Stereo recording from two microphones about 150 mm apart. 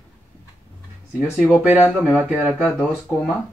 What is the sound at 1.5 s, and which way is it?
Speech, 10° right (ahead or behind).